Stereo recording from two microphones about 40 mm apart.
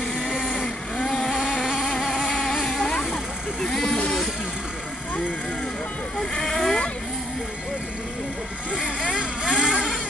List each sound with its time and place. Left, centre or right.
0.0 s vehicle: left
2.5 s vehicle: centre
3.6 s a sound: centre
6.3 s vehicle: centre
9.1 s vehicle: centre